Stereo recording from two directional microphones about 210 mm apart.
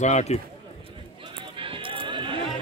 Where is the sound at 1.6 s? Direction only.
25° right (ahead or behind).